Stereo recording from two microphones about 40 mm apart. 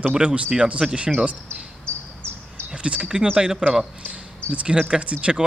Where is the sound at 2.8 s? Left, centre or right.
Right.